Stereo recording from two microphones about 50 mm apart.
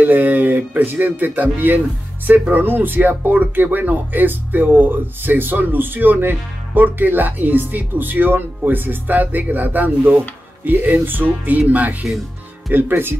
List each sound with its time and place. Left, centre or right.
0.0 s speech: right
12.7 s speech: right